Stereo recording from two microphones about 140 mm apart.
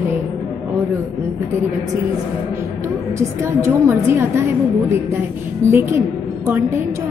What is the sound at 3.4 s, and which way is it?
A woman's voice, 20° right (ahead or behind).